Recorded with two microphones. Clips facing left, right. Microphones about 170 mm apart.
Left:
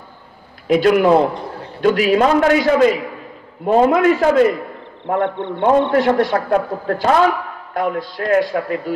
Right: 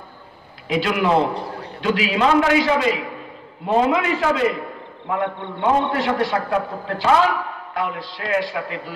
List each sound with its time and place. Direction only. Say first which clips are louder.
0.7 s a man's voice: left 7 dB; 45° left (ahead or behind)
5.0 s a man's voice: left 5 dB; 55° left (ahead or behind)